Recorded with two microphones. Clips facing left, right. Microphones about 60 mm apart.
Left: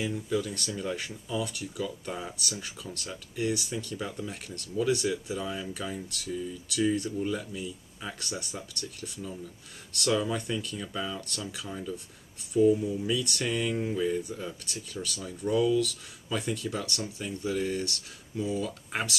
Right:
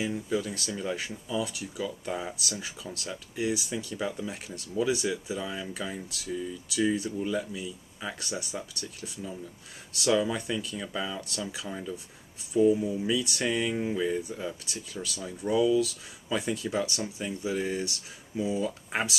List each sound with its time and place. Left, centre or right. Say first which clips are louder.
0.0 s speech: even; centre